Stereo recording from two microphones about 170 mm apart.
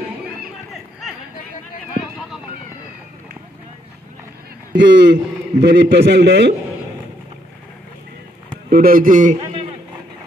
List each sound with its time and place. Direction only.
4.7 s a man's voice: 90° right
8.6 s a man's voice: 60° right (ahead or behind)